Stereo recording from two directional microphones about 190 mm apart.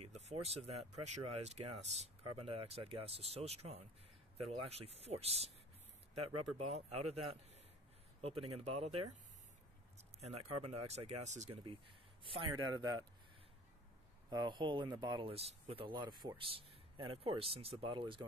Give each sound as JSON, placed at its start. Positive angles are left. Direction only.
{"t": 0.7, "sound": "a man's voice", "side_deg": -35}
{"t": 12.5, "sound": "speech", "side_deg": -90}
{"t": 14.3, "sound": "speech", "side_deg": -25}